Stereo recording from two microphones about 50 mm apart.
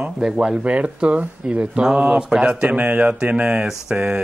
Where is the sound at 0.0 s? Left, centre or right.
Centre.